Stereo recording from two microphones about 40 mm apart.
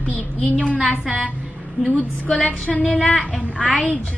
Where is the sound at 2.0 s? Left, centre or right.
Left.